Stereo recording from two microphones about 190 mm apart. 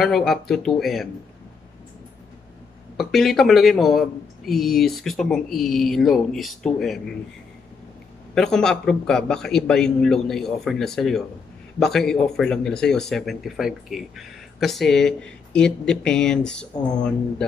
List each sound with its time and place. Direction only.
0.0 s speech: centre (ahead or behind)
3.0 s speech: centre (ahead or behind)
8.4 s speech: 5° left (ahead or behind)
16.7 s speech: 20° left (ahead or behind)